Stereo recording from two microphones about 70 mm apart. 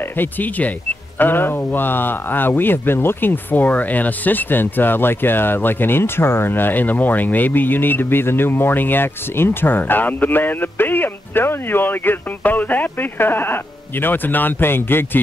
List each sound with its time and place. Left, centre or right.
0.2 s a man's voice: left